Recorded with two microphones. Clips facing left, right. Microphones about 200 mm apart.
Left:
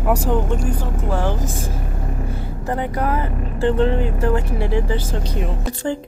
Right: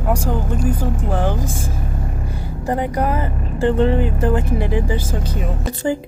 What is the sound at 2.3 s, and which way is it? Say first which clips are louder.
Vehicle: right 4 dB; 15° right (ahead or behind).